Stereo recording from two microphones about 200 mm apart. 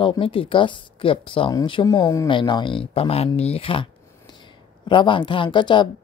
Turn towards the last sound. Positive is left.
turn(degrees=25)  # may be behind; listen again after turning